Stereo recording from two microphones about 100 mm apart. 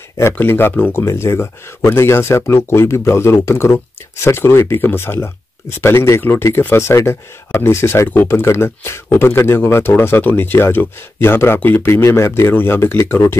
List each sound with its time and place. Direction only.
0.3 s speech: 20° left (ahead or behind)